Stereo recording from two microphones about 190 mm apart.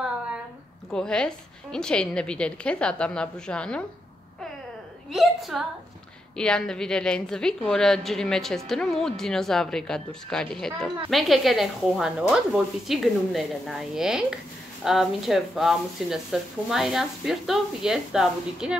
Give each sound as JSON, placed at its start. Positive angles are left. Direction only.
{"t": 0.9, "sound": "a woman's voice", "side_deg": 5}
{"t": 5.1, "sound": "a woman's voice", "side_deg": 0}